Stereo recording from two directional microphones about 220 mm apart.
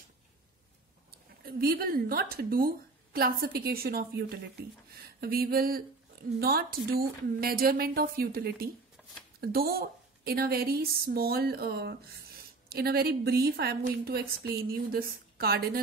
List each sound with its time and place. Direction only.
1.1 s a woman's voice: 45° right (ahead or behind)